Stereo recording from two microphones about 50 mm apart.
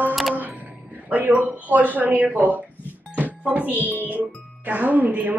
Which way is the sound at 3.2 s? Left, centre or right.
Right.